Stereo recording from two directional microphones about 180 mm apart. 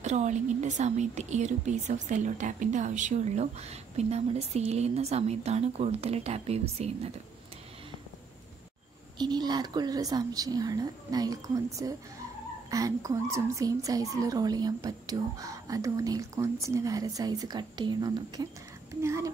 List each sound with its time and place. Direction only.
0.0 s a woman's voice: 40° right (ahead or behind)
9.2 s a woman's voice: 25° right (ahead or behind)